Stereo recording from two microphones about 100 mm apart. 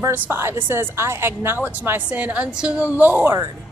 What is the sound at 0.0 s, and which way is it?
Speech, 25° right (ahead or behind).